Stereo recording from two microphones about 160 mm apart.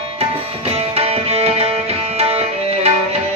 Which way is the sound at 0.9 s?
40° right (ahead or behind).